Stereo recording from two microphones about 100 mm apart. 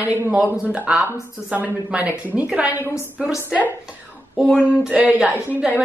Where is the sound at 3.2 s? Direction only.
10° right (ahead or behind).